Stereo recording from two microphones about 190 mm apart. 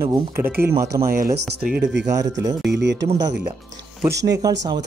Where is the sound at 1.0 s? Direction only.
50° right (ahead or behind).